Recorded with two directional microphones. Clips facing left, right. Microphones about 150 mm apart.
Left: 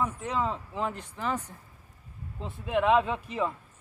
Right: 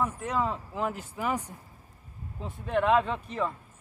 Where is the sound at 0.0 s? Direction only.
Centre (ahead or behind).